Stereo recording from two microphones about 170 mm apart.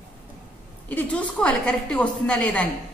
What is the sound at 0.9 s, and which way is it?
A man's voice, 10° left (ahead or behind).